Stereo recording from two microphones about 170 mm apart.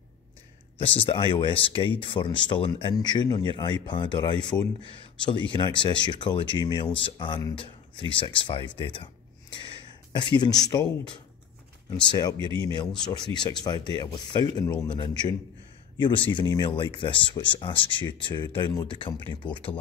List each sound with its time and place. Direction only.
0.7 s speech: 30° left (ahead or behind)
12.4 s speech: 30° right (ahead or behind)
13.1 s speech: 25° left (ahead or behind)